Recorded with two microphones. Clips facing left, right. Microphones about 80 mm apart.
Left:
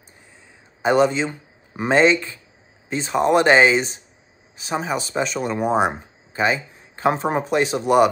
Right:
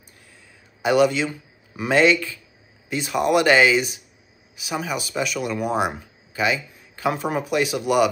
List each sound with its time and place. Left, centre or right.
0.8 s speech: left